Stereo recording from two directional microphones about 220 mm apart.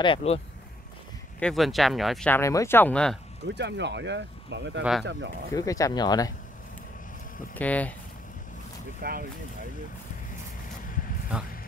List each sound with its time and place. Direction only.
0.0 s speech: 25° left (ahead or behind)
1.4 s speech: centre (ahead or behind)
3.4 s speech: 50° right (ahead or behind)
5.5 s speech: 15° left (ahead or behind)
7.5 s speech: 5° left (ahead or behind)
9.0 s speech: 45° right (ahead or behind)